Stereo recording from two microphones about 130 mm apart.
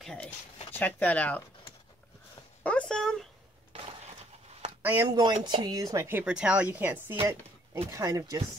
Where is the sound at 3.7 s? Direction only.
45° right (ahead or behind).